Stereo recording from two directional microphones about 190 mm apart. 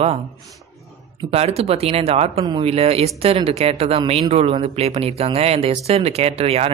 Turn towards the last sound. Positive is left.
turn(degrees=-30)  # may be behind; listen again after turning